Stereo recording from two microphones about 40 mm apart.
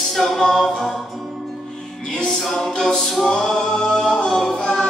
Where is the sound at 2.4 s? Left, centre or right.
Centre.